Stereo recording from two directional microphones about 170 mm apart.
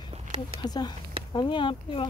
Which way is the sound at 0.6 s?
25° left (ahead or behind).